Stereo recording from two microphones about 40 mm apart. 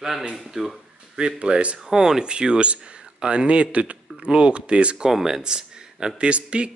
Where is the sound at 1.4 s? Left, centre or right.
Right.